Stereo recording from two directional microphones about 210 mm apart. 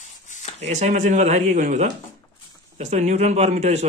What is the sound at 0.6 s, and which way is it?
A man's voice, 35° right (ahead or behind).